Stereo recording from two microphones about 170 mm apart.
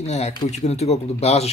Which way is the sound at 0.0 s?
40° left (ahead or behind).